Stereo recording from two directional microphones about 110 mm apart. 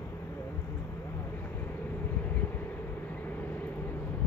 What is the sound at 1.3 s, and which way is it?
Vehicle, 15° left (ahead or behind).